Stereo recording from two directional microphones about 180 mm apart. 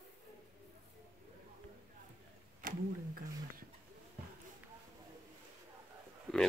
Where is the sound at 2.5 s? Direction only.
55° right (ahead or behind).